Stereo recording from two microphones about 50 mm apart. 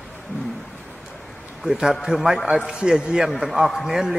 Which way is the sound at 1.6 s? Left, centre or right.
Centre.